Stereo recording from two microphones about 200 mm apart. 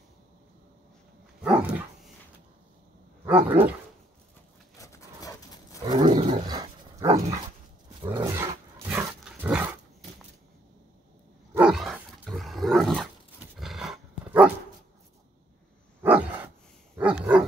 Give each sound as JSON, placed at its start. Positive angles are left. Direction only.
{"t": 1.4, "sound": "dog", "side_deg": -5}
{"t": 3.3, "sound": "speech", "side_deg": -10}
{"t": 4.7, "sound": "dog", "side_deg": 15}
{"t": 5.9, "sound": "roaring cats", "side_deg": -25}
{"t": 6.4, "sound": "dog", "side_deg": -20}
{"t": 8.1, "sound": "roar", "side_deg": -15}
{"t": 8.8, "sound": "dog", "side_deg": -10}
{"t": 11.5, "sound": "roar", "side_deg": -5}
{"t": 16.0, "sound": "dog", "side_deg": -10}